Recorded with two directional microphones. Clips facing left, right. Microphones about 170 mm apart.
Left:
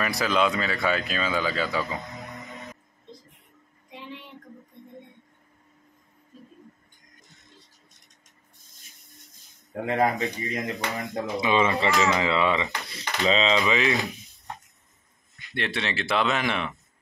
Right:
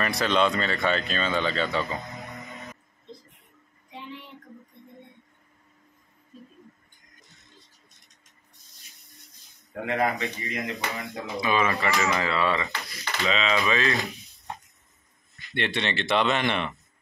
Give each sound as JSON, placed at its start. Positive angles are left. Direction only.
{"t": 0.0, "sound": "speech", "side_deg": 5}
{"t": 9.8, "sound": "speech", "side_deg": 35}
{"t": 11.4, "sound": "speech", "side_deg": 25}
{"t": 15.5, "sound": "speech", "side_deg": 0}